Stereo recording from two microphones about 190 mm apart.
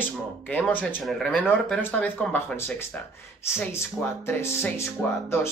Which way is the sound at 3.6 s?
10° left (ahead or behind).